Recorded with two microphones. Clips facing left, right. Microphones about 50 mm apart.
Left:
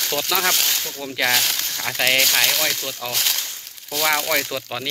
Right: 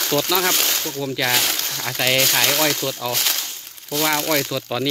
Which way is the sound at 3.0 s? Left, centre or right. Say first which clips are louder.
Right 2 dB; left.